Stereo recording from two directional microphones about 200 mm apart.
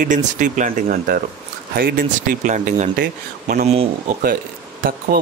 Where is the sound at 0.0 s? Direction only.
40° right (ahead or behind).